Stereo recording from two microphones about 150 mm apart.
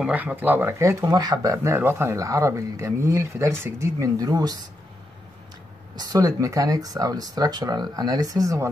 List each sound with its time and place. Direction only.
0.0 s speech: 10° right (ahead or behind); by 4.6 s 25° right (ahead or behind)
5.9 s speech: 25° right (ahead or behind)